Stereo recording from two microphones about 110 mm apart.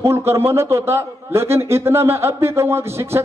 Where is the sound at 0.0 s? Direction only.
25° right (ahead or behind).